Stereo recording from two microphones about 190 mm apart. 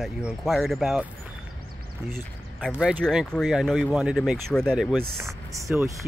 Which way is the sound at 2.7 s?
5° right (ahead or behind).